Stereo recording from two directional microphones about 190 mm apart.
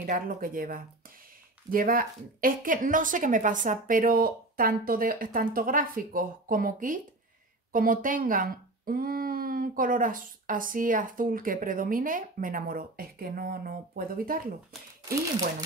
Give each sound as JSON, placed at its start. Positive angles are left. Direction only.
{"t": 0.0, "sound": "speech", "side_deg": -45}